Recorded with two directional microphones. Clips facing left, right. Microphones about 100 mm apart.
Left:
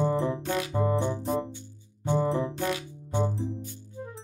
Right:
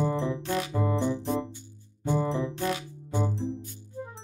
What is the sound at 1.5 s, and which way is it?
Music, centre (ahead or behind).